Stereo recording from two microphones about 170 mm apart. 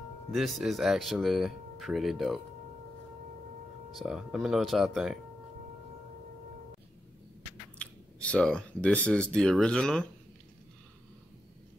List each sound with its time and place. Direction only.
0.3 s speech: centre (ahead or behind)
4.0 s speech: 5° right (ahead or behind)
7.8 s speech: 5° left (ahead or behind)